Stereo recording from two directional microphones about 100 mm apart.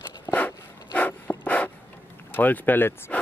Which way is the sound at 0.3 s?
15° left (ahead or behind).